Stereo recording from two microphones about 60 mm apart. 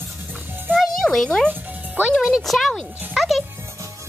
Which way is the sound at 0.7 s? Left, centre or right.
Centre.